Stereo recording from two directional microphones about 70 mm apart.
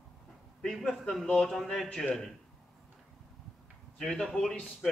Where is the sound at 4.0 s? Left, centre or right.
Centre.